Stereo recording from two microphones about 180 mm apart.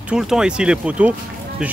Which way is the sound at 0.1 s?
5° right (ahead or behind).